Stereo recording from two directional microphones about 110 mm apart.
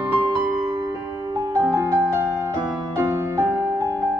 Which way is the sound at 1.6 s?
25° right (ahead or behind).